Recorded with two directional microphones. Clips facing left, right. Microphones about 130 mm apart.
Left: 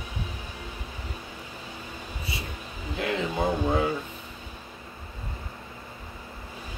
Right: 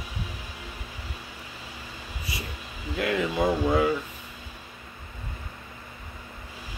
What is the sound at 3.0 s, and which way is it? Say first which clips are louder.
Speech: right 2 dB; 25° left (ahead or behind).